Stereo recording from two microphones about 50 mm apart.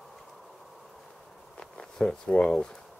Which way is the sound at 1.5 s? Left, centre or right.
Centre.